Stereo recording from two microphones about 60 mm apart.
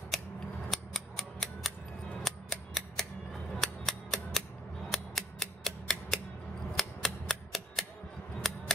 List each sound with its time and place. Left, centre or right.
0.1 s scissors: centre
0.7 s mechanisms: centre
3.6 s cap gun: centre
4.9 s mechanisms: centre
6.8 s cap gun: centre
8.4 s a sound: centre